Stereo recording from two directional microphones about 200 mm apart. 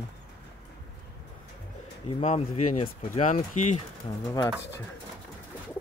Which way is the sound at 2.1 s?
30° left (ahead or behind).